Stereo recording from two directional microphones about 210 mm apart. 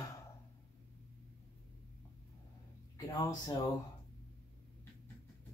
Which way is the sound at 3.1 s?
20° left (ahead or behind).